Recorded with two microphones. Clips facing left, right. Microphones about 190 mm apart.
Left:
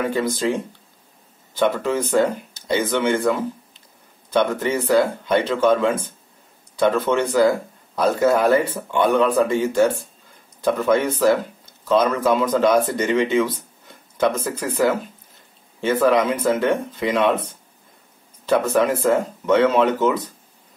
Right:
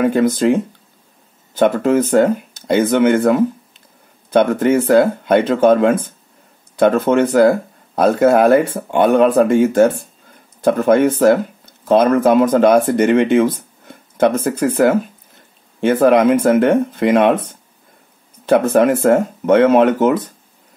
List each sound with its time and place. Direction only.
0.0 s speech: 50° right (ahead or behind)
18.4 s speech: 55° right (ahead or behind)